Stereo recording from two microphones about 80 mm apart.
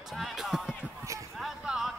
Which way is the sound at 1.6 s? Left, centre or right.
Centre.